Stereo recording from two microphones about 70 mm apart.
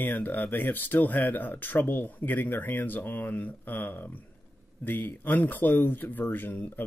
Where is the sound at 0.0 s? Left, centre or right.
Left.